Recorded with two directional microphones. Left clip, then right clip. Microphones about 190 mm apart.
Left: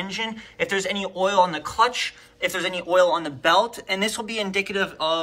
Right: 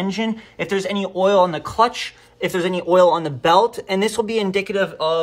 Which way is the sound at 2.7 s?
55° right (ahead or behind).